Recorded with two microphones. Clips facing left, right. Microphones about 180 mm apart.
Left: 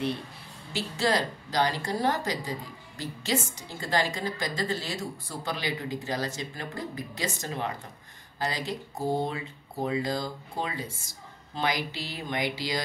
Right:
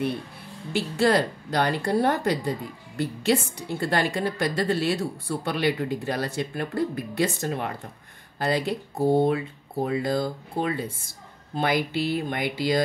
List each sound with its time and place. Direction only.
0.7 s a woman's voice: 55° right (ahead or behind)